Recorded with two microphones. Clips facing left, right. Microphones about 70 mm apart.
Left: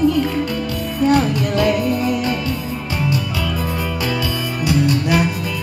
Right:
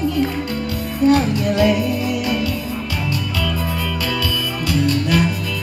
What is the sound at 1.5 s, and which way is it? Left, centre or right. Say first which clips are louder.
Music: even; left.